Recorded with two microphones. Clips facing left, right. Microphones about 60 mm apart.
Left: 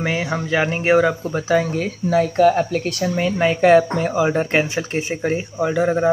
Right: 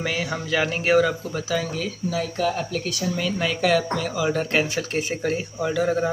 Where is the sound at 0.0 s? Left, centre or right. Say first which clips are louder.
Left 4 dB; left.